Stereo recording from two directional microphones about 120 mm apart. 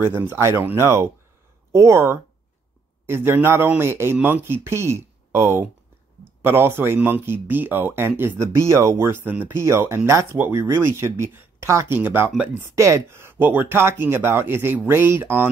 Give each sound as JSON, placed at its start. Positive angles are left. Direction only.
{"t": 0.1, "sound": "speech", "side_deg": -20}